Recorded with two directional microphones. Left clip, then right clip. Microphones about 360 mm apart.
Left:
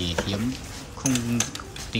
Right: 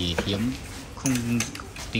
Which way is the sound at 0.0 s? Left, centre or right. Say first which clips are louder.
Even; centre.